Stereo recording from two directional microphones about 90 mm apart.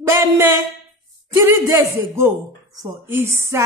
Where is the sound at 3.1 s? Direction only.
30° right (ahead or behind).